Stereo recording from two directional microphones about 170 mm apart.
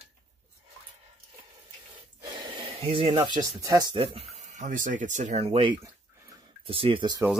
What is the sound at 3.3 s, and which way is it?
Speech, 20° right (ahead or behind).